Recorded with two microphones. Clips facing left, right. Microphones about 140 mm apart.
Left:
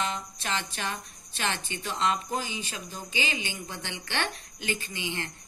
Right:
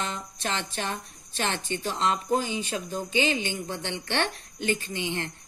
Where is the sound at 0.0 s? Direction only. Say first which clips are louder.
Even; 50° right (ahead or behind).